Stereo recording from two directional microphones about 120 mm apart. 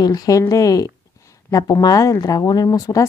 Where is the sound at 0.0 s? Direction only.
30° left (ahead or behind).